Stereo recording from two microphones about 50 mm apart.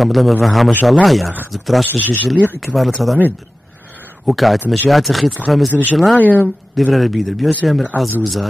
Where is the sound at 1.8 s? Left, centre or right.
Left.